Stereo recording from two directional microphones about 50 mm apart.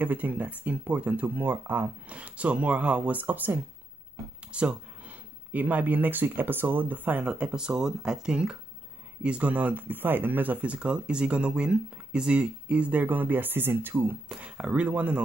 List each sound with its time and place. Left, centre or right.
0.0 s speech: right
1.4 s speech: right
2.0 s speech: right
3.2 s speech: right
4.5 s a sound: right
5.5 s speech: right
7.2 s speech: centre; by 14.1 s right
14.4 s speech: right